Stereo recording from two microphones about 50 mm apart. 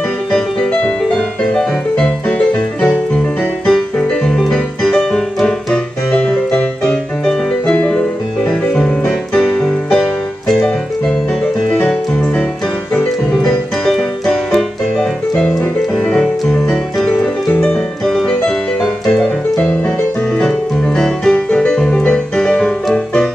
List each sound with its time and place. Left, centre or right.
0.3 s music: centre
2.3 s music: left
3.6 s music: centre
6.1 s music: left
6.8 s music: centre
13.3 s music: centre
16.1 s music: centre
18.0 s music: centre
20.3 s music: centre